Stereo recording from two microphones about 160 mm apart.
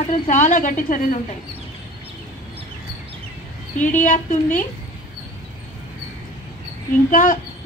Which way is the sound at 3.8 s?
50° left (ahead or behind).